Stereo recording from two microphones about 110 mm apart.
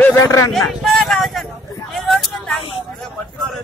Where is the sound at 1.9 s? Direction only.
Centre (ahead or behind).